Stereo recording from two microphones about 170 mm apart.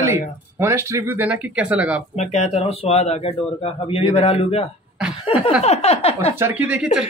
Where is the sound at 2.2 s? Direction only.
40° left (ahead or behind).